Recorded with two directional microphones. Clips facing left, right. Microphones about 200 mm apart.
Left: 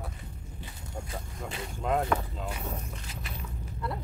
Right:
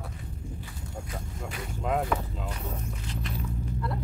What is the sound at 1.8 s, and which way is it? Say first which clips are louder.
Speech: even; centre (ahead or behind).